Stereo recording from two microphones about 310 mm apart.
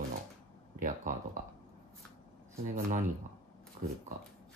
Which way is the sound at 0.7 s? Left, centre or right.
Right.